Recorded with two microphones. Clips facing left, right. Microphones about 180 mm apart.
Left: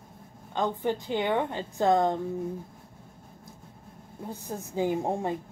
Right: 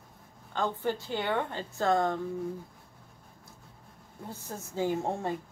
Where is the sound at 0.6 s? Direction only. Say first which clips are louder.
Left 3 dB; 15° left (ahead or behind).